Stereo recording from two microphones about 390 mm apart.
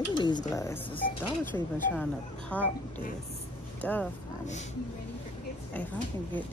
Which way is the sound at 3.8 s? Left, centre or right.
Centre.